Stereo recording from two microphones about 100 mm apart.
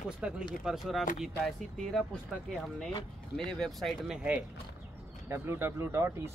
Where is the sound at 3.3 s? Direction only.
5° left (ahead or behind).